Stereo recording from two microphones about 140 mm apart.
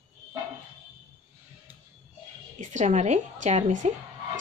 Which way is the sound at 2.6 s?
60° right (ahead or behind).